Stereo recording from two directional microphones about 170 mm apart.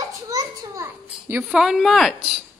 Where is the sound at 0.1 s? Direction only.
20° right (ahead or behind).